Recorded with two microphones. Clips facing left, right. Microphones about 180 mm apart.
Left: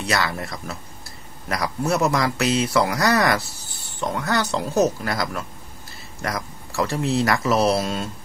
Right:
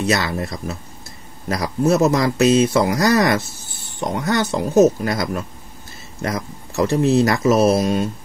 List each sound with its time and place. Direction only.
0.0 s speech: 20° right (ahead or behind)